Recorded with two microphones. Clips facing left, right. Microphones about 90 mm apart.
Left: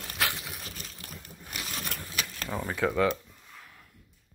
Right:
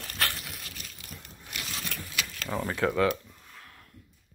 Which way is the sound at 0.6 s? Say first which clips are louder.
Left 2 dB; 35° left (ahead or behind).